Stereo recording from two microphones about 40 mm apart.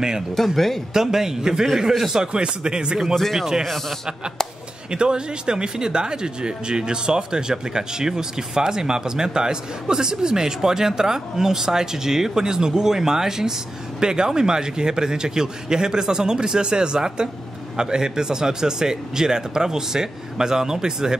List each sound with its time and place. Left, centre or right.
0.4 s speech: centre
0.9 s speech: centre
2.3 s speech: right
3.6 s a man's voice: centre
4.9 s speech: right